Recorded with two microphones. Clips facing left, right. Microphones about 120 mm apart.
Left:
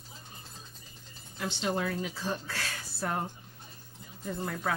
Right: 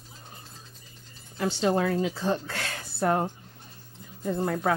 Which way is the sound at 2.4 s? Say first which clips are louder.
Right 3 dB; 60° right (ahead or behind).